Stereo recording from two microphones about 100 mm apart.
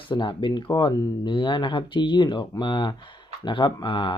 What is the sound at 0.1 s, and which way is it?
Speech, 55° left (ahead or behind).